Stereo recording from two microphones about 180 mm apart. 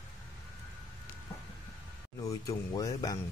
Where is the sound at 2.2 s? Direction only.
20° left (ahead or behind).